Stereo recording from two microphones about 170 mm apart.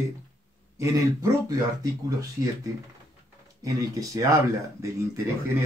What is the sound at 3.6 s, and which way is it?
Speech, 20° right (ahead or behind).